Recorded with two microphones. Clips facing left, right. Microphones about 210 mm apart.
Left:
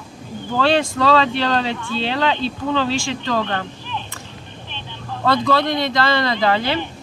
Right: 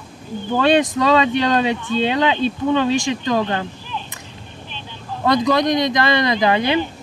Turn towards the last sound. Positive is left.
turn(degrees=-15)  # may be behind; listen again after turning